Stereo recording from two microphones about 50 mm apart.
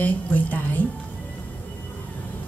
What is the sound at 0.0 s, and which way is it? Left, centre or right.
Speech, left.